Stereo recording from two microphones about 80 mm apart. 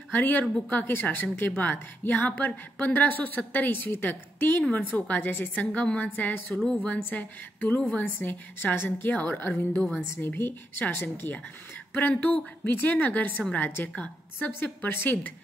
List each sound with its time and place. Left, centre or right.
0.1 s a woman's voice: left
7.0 s a woman's voice: left